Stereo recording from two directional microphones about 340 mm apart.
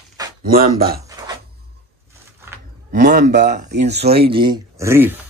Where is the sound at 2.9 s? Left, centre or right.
Right; by 5.2 s centre.